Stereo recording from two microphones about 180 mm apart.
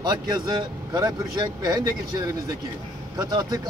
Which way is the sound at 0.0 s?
25° right (ahead or behind).